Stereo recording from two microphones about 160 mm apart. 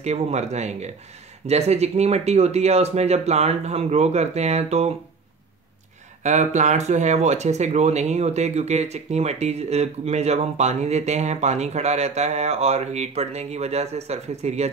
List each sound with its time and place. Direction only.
0.0 s speech: 45° right (ahead or behind)
6.2 s speech: 45° right (ahead or behind)